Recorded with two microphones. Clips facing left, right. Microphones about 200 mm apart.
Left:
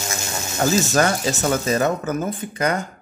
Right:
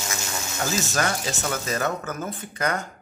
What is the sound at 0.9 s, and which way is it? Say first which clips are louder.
Speech: left 7 dB; 45° left (ahead or behind).